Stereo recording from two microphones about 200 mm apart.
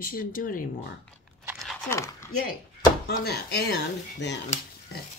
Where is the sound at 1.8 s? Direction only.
15° left (ahead or behind).